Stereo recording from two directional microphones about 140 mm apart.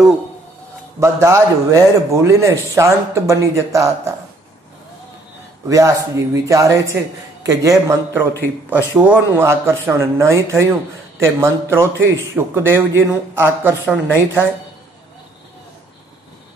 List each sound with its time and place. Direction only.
0.9 s a man's voice: 20° right (ahead or behind)
5.7 s a man's voice: 25° right (ahead or behind)